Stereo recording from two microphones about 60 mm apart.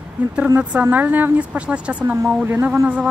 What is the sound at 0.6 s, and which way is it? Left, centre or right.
Speech, right.